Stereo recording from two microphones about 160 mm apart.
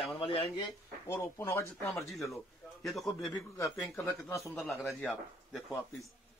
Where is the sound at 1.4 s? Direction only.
15° left (ahead or behind).